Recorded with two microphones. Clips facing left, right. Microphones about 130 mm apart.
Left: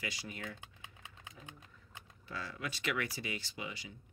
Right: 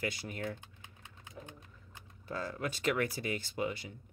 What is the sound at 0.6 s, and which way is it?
Typing, 90° left.